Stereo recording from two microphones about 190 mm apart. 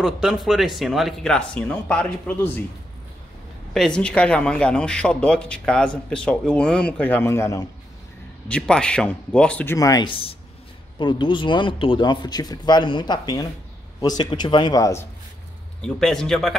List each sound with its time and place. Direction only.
0.0 s speech: centre (ahead or behind)
3.7 s speech: 5° left (ahead or behind)
9.8 s speech: 20° left (ahead or behind)
15.8 s speech: 5° left (ahead or behind)